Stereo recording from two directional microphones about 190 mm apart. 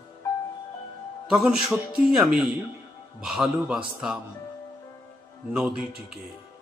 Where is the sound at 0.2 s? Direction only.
15° left (ahead or behind).